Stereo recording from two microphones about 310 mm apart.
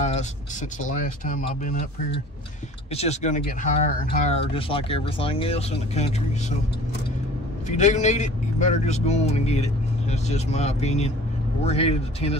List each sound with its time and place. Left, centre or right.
0.0 s a man's voice: left
7.6 s a man's voice: left